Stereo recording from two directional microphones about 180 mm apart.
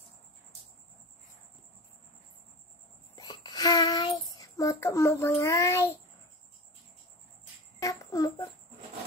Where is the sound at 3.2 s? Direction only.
20° left (ahead or behind).